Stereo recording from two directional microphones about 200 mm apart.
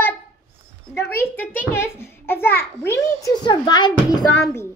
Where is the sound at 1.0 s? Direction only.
10° left (ahead or behind).